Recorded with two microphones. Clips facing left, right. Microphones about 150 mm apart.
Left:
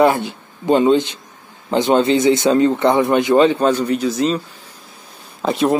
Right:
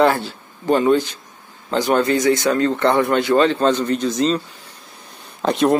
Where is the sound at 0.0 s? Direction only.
15° left (ahead or behind).